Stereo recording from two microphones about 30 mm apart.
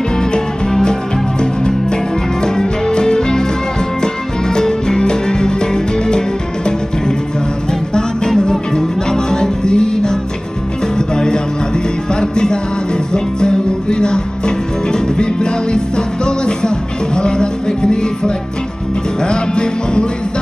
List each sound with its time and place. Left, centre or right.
0.2 s music: left